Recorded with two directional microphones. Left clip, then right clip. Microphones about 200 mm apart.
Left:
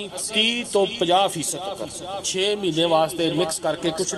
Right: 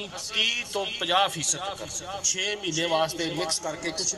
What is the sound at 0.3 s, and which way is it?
A man's voice, 40° left (ahead or behind).